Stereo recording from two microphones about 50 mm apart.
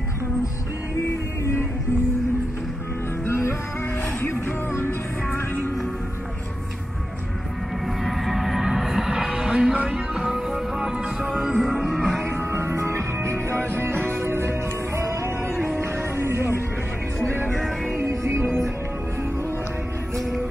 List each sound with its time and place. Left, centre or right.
3.3 s music: left
4.2 s music: left
8.0 s music: centre
12.3 s music: right
13.7 s music: right
18.0 s music: right